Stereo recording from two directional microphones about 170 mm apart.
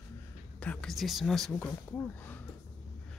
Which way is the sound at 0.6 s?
5° left (ahead or behind).